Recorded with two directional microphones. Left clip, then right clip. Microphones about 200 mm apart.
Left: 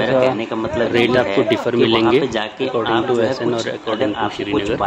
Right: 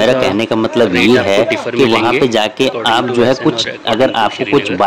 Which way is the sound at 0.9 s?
15° left (ahead or behind).